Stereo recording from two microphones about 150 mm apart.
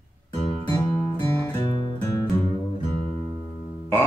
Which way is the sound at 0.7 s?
20° left (ahead or behind).